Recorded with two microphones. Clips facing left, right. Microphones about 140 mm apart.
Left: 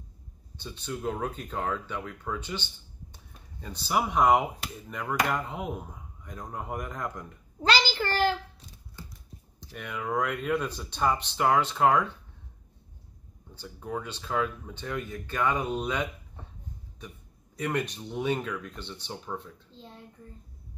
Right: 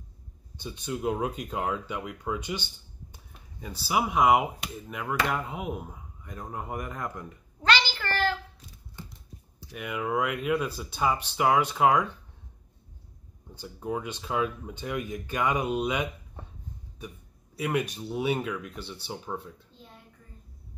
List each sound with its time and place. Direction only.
0.6 s speech: 15° right (ahead or behind)
7.6 s a sound: 35° left (ahead or behind)
9.6 s speech: 10° right (ahead or behind)
13.6 s speech: 15° right (ahead or behind)
17.6 s speech: 10° right (ahead or behind)